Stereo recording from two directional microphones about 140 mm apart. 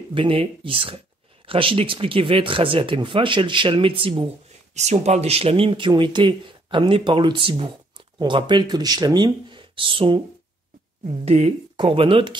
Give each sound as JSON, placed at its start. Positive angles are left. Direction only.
{"t": 0.1, "sound": "speech", "side_deg": -40}
{"t": 4.7, "sound": "speech", "side_deg": -55}
{"t": 11.1, "sound": "speech", "side_deg": -50}
{"t": 11.7, "sound": "speech", "side_deg": -40}